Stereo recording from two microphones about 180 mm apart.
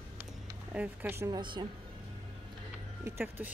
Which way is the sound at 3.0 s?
10° right (ahead or behind).